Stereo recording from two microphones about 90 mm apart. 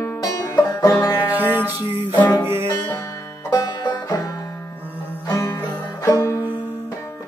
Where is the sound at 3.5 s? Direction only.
50° left (ahead or behind).